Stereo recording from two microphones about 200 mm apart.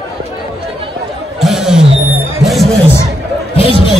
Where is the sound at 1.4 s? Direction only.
Centre (ahead or behind).